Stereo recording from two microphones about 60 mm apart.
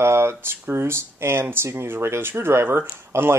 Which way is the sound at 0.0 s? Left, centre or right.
Right.